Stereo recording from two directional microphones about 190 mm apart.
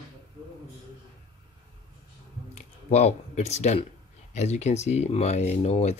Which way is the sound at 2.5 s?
35° left (ahead or behind).